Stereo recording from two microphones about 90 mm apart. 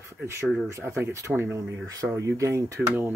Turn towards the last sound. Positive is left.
turn(degrees=-20)  # may be behind; listen again after turning